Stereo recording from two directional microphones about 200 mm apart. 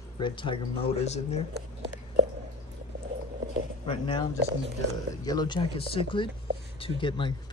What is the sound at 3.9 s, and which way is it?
Speech, 25° left (ahead or behind).